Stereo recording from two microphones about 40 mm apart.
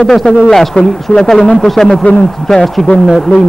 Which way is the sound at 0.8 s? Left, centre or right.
Left.